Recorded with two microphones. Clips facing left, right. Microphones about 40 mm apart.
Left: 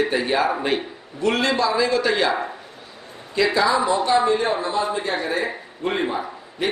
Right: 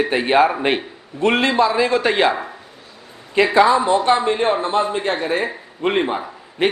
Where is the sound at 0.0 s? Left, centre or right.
Right.